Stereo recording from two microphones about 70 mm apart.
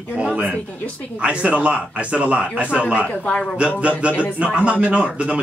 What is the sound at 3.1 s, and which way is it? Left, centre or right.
Speech, centre.